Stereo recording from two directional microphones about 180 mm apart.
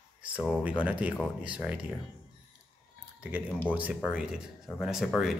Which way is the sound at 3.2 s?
10° right (ahead or behind).